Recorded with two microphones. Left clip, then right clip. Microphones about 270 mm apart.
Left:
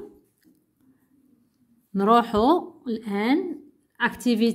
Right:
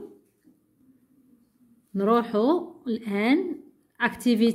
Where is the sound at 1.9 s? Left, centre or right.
Centre.